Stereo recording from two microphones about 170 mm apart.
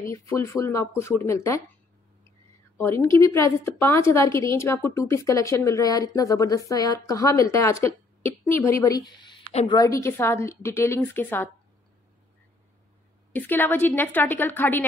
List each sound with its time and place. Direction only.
0.1 s a woman's voice: 15° left (ahead or behind)
2.8 s a woman's voice: 15° left (ahead or behind)
13.3 s a woman's voice: 10° left (ahead or behind)